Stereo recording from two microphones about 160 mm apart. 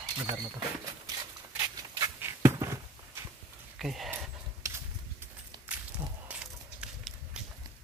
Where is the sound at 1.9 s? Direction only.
20° right (ahead or behind).